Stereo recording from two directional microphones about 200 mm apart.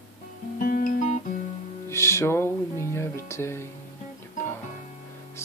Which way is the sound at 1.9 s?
15° left (ahead or behind).